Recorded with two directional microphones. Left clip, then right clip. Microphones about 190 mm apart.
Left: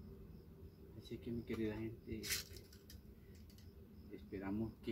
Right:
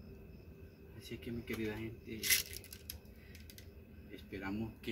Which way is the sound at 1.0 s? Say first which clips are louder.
Right 3 dB; 5° left (ahead or behind).